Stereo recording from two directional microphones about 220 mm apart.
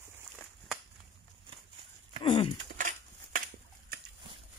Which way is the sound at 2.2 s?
20° left (ahead or behind).